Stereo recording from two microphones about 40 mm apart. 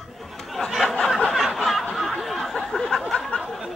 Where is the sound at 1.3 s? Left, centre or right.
Centre.